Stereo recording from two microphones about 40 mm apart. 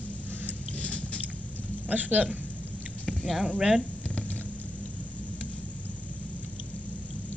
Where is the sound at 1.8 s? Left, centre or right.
Right.